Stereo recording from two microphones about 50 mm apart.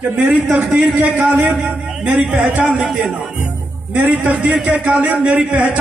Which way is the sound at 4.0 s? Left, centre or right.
Right.